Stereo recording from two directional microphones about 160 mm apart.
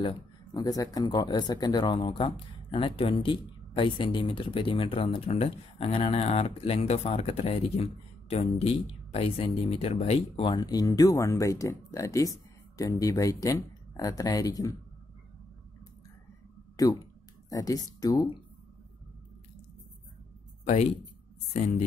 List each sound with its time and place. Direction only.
0.7 s speech: 25° left (ahead or behind)
16.7 s a sound: 20° left (ahead or behind)
20.6 s speech: 45° left (ahead or behind)